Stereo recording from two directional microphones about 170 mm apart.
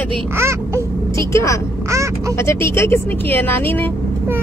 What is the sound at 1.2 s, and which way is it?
A woman's voice, 15° left (ahead or behind).